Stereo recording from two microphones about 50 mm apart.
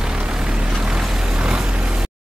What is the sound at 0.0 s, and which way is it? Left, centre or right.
Vehicle, centre.